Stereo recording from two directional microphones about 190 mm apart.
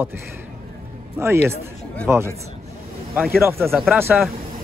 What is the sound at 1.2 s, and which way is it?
Speech, 15° right (ahead or behind).